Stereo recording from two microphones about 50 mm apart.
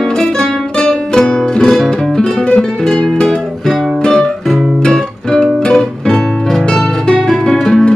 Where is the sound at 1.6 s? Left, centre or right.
Centre.